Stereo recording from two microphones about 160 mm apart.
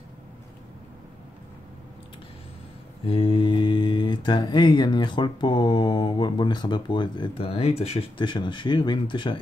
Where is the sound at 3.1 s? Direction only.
35° left (ahead or behind).